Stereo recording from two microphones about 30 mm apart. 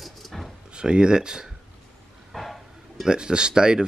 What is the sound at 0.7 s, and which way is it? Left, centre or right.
Speech, right.